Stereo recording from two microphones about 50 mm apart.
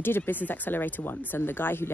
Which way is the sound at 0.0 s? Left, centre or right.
Left.